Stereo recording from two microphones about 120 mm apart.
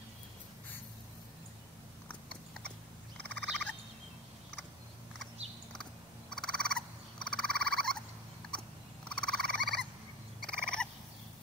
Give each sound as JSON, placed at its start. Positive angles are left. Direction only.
{"t": 2.0, "sound": "biting", "side_deg": 10}
{"t": 3.2, "sound": "owl", "side_deg": 10}
{"t": 6.3, "sound": "frog", "side_deg": 5}
{"t": 9.1, "sound": "frog", "side_deg": 5}
{"t": 10.4, "sound": "cat", "side_deg": 5}